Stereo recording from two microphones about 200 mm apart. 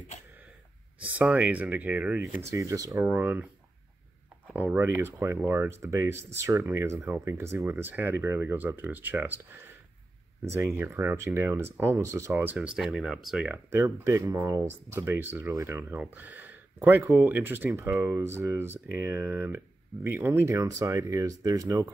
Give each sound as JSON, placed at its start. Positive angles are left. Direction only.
{"t": 1.0, "sound": "speech", "side_deg": -5}
{"t": 4.6, "sound": "speech", "side_deg": -10}
{"t": 13.7, "sound": "speech", "side_deg": -15}